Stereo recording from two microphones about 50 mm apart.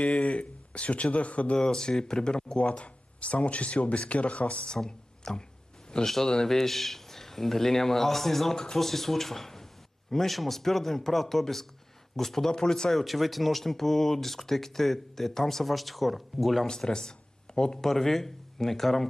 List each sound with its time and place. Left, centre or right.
0.0 s speech: left
1.6 s speech: centre
4.7 s speech: centre
13.0 s speech: centre
16.6 s speech: centre